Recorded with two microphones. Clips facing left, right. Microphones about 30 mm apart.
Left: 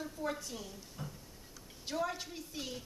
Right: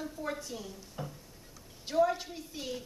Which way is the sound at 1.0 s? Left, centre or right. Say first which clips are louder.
Right 5 dB; centre.